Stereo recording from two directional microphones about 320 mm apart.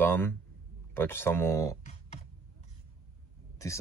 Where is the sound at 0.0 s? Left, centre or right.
Centre.